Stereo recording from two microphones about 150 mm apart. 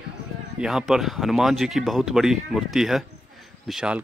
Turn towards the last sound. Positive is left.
turn(degrees=-5)  # may be behind; listen again after turning